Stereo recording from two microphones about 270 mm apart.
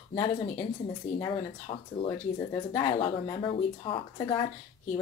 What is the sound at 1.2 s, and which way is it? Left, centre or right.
Speech, centre.